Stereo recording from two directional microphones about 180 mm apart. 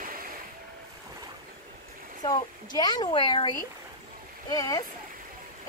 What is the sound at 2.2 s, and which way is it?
Speech, 20° left (ahead or behind).